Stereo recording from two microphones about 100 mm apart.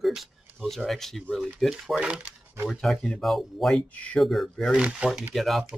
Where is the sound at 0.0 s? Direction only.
Centre (ahead or behind).